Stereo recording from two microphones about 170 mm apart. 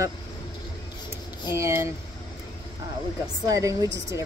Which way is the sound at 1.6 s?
15° right (ahead or behind).